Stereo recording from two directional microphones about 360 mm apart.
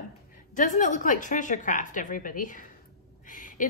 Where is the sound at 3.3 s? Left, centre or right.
Left.